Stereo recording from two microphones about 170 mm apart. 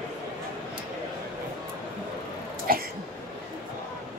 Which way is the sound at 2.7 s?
55° right (ahead or behind).